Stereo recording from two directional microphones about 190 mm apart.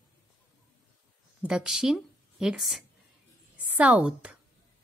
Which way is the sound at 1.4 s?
5° right (ahead or behind).